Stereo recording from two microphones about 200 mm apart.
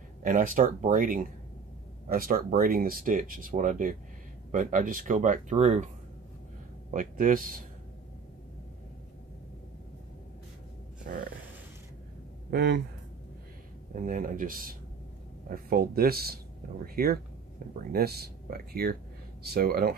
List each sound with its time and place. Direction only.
0.2 s speech: 40° right (ahead or behind)
6.9 s speech: 40° right (ahead or behind)
11.1 s speech: 45° right (ahead or behind)
12.4 s speech: 55° right (ahead or behind)
13.9 s speech: 40° right (ahead or behind)